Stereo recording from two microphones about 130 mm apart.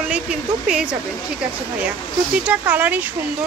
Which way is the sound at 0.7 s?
5° right (ahead or behind).